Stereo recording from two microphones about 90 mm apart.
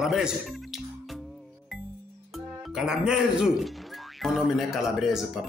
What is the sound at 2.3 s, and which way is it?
Speech, 5° right (ahead or behind).